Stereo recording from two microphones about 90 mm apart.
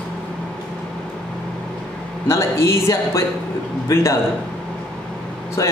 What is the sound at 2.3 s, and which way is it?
A man's voice, 30° left (ahead or behind).